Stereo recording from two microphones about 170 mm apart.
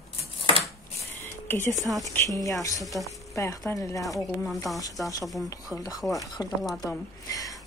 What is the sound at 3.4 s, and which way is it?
Speech, 20° left (ahead or behind).